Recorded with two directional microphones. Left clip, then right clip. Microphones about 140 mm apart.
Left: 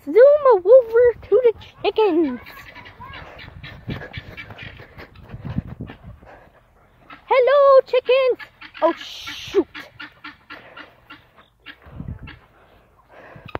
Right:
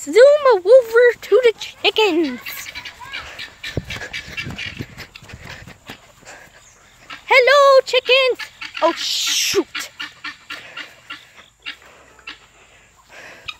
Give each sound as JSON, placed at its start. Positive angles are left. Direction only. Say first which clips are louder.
{"t": 0.1, "sound": "speech", "louder": "right 1 dB", "side_deg": -5}
{"t": 0.9, "sound": "a sound", "louder": "right 2 dB", "side_deg": -10}
{"t": 1.7, "sound": "speech", "louder": "right 2 dB", "side_deg": 5}
{"t": 2.2, "sound": "goat", "louder": "right 2 dB", "side_deg": -20}
{"t": 3.3, "sound": "crow", "louder": "right 10 dB", "side_deg": -15}
{"t": 4.3, "sound": "a sound", "louder": "right 8 dB", "side_deg": 0}
{"t": 5.4, "sound": "horse", "louder": "left 3 dB", "side_deg": 5}
{"t": 7.2, "sound": "dog", "louder": "right 2 dB", "side_deg": 0}
{"t": 8.1, "sound": "speech", "louder": "right 2 dB", "side_deg": 10}
{"t": 9.9, "sound": "dog", "louder": "right 7 dB", "side_deg": 50}
{"t": 11.1, "sound": "dog", "louder": "right 11 dB", "side_deg": 60}
{"t": 13.1, "sound": "a sound", "louder": "right 5 dB", "side_deg": 5}